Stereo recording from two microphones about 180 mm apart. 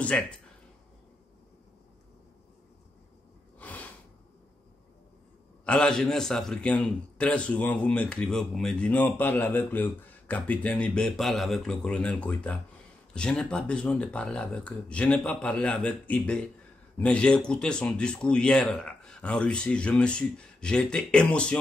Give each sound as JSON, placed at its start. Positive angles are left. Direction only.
{"t": 0.0, "sound": "speech", "side_deg": 5}
{"t": 3.5, "sound": "a sound", "side_deg": 10}
{"t": 5.7, "sound": "a man's voice", "side_deg": 5}